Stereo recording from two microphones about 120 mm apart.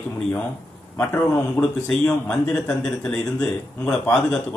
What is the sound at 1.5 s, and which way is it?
A man's voice, 5° left (ahead or behind).